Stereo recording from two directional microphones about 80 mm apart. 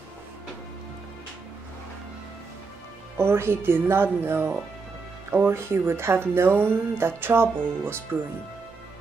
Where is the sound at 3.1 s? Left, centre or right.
Right.